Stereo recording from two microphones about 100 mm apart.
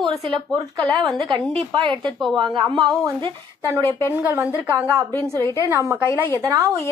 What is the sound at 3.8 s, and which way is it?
Speech, 25° left (ahead or behind).